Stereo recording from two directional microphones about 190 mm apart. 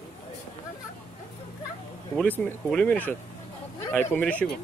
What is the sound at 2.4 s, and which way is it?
Speech, 5° left (ahead or behind).